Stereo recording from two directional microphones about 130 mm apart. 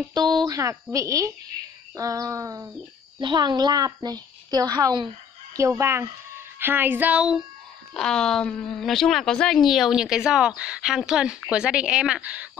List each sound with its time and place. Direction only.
0.1 s speech: 30° right (ahead or behind)
3.2 s a child's voice: 35° right (ahead or behind)
5.6 s speech: 20° right (ahead or behind); by 7.4 s 5° right (ahead or behind)
7.9 s a woman's voice: 5° left (ahead or behind)